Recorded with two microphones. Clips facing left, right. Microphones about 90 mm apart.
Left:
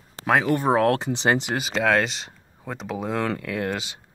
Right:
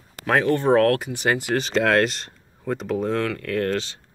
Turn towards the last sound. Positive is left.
turn(degrees=15)  # may be behind; listen again after turning